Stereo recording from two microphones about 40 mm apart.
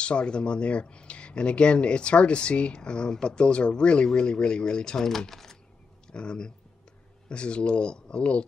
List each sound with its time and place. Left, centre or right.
0.0 s speech: left; by 5.6 s centre
6.1 s speech: left